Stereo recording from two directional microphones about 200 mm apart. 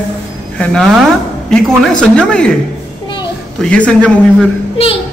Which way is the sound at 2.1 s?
5° left (ahead or behind).